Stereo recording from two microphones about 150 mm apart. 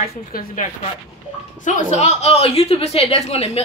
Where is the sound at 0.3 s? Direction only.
75° left (ahead or behind).